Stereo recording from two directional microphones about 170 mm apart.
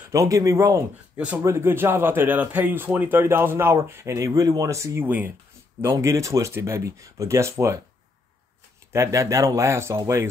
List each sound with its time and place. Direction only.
0.1 s a man's voice: 20° right (ahead or behind)
8.9 s a man's voice: 20° right (ahead or behind)